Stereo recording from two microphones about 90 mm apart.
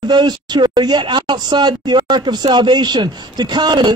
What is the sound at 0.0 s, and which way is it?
Speech, 55° right (ahead or behind).